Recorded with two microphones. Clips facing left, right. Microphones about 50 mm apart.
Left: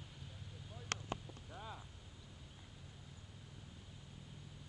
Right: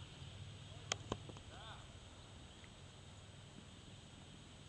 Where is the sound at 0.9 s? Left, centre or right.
Left.